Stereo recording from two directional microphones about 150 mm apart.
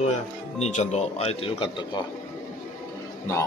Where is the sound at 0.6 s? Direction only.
50° left (ahead or behind); by 2.0 s 30° left (ahead or behind).